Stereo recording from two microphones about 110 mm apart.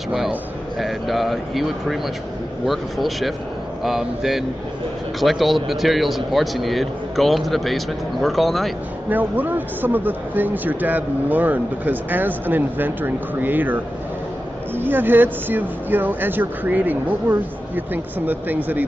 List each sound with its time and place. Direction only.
0.7 s a man's voice: centre (ahead or behind)
9.1 s speech: 15° right (ahead or behind)
14.8 s speech: 20° right (ahead or behind)